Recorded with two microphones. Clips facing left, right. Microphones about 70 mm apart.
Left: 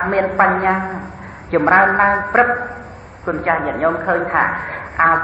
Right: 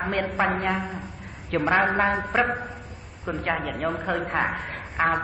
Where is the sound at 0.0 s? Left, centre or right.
Left.